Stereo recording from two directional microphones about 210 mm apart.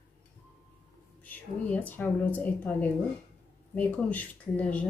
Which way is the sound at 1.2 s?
10° left (ahead or behind).